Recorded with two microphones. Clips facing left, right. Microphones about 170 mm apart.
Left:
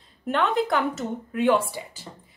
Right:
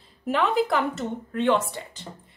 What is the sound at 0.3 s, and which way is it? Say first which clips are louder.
Speech: even; centre (ahead or behind).